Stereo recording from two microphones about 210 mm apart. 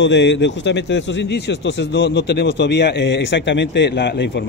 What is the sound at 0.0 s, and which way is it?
A man's voice, 55° left (ahead or behind).